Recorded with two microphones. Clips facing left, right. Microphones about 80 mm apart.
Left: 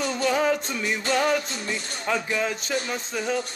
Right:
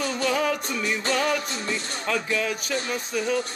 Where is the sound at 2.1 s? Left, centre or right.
Left.